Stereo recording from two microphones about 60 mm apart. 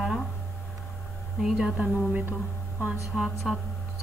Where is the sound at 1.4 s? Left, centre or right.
Centre.